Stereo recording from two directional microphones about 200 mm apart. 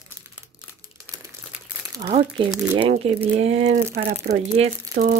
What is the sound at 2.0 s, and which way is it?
Speech, 30° right (ahead or behind).